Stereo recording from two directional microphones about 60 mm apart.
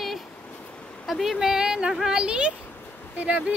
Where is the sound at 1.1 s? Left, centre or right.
Centre.